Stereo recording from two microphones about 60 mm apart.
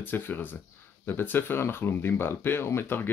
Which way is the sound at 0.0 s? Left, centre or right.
Left.